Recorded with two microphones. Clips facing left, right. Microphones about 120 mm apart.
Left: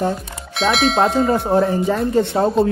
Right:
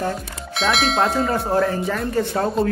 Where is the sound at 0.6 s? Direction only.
Centre (ahead or behind).